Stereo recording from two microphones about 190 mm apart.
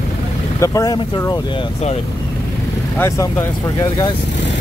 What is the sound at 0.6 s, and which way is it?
Speech, 20° left (ahead or behind).